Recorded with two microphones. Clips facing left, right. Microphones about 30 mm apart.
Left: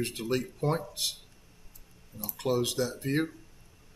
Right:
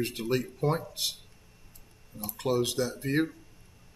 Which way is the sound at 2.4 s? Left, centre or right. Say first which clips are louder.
Right 1 dB; centre.